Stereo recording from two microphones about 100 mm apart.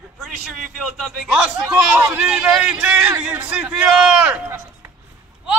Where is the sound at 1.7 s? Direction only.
25° right (ahead or behind).